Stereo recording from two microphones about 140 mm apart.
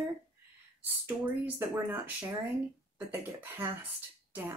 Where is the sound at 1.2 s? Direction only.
10° right (ahead or behind).